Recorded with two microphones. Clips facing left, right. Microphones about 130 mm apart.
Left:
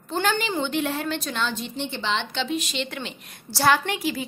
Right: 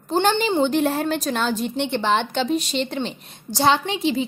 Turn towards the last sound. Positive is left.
turn(degrees=-25)  # may be behind; listen again after turning